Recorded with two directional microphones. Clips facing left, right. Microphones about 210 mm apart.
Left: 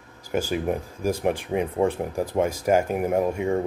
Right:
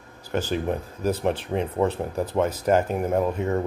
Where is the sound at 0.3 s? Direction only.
10° left (ahead or behind).